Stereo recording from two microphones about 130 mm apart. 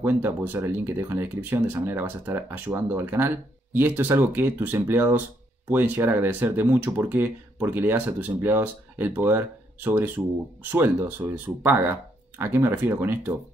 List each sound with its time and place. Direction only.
0.0 s speech: 15° right (ahead or behind)